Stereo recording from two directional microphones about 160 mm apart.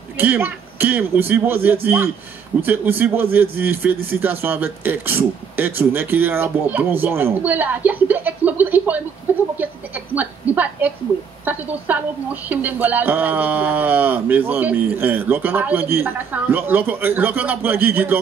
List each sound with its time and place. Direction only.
0.2 s a man's voice: 10° right (ahead or behind)